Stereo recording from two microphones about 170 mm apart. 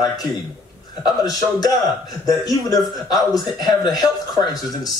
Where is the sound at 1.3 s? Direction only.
20° left (ahead or behind).